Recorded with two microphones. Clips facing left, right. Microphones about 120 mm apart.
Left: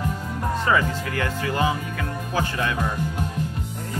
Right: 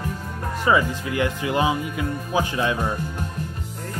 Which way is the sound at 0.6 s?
15° right (ahead or behind).